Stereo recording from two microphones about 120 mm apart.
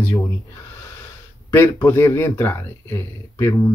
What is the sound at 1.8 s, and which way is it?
Speech, 20° left (ahead or behind).